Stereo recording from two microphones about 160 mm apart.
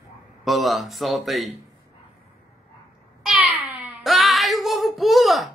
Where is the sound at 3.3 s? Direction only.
10° right (ahead or behind).